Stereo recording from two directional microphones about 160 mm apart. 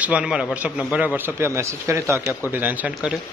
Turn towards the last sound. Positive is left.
turn(degrees=-10)  # may be behind; listen again after turning